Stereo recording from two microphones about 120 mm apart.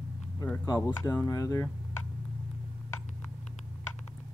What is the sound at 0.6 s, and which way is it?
Speech, 25° left (ahead or behind).